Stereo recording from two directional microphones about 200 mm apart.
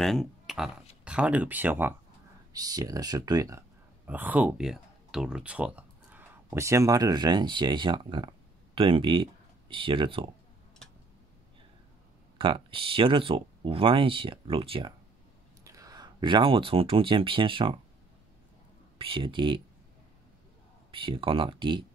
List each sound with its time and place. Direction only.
0.0 s speech: centre (ahead or behind); by 10.3 s 25° right (ahead or behind)
12.4 s speech: 25° right (ahead or behind)
18.9 s speech: 25° right (ahead or behind)
20.9 s speech: 25° right (ahead or behind)